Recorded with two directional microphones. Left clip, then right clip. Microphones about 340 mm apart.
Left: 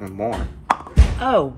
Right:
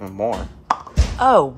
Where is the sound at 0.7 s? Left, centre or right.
Centre.